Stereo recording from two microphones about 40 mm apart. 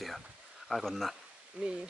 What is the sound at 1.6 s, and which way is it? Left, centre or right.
Speech, right.